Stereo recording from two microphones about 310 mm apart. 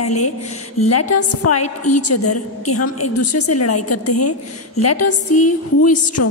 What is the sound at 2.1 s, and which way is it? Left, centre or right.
A woman's voice, left.